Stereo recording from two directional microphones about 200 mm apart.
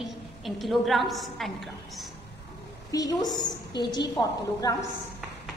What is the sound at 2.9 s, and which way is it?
A woman's voice, 20° left (ahead or behind).